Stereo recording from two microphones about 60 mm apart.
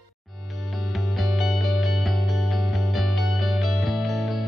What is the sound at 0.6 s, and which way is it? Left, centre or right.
Music, centre.